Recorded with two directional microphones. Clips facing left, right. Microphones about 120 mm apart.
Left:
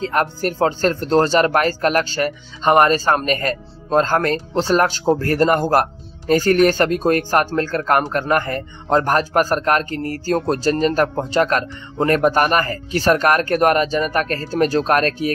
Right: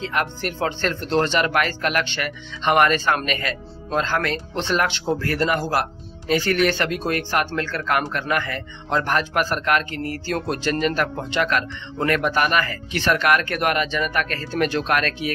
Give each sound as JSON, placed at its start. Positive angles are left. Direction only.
{"t": 0.0, "sound": "speech", "side_deg": 40}